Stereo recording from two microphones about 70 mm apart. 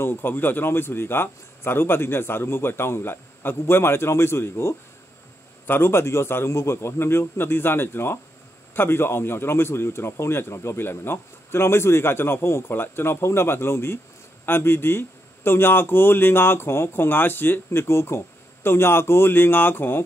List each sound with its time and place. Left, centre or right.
0.0 s speech: left